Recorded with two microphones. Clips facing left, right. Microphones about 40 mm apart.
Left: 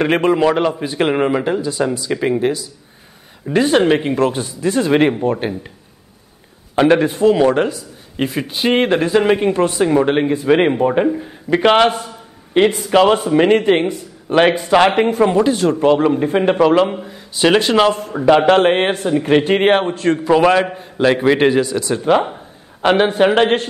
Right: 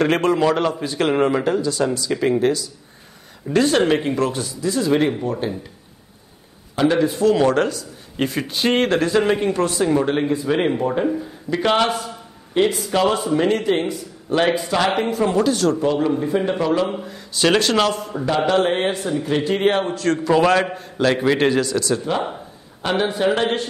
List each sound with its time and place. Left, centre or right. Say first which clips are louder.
0.0 s a man's voice: left 3 dB; left
6.7 s a man's voice: left 5 dB; left
7.3 s a man's voice: left 3 dB; centre
15.8 s a man's voice: left 6 dB; left
16.9 s a man's voice: left 1 dB; centre
17.9 s a man's voice: left 8 dB; left
20.1 s a man's voice: left 4 dB; left
22.8 s a man's voice: left 7 dB; left